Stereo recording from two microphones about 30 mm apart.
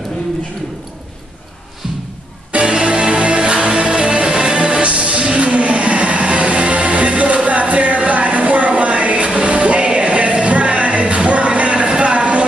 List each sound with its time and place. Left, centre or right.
2.5 s music: right
4.8 s music: right